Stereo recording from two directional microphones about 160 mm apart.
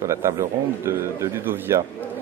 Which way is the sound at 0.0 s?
20° right (ahead or behind).